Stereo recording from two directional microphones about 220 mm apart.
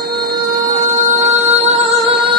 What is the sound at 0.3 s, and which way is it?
Music, 15° right (ahead or behind).